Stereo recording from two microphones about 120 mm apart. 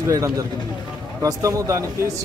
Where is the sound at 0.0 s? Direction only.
25° right (ahead or behind).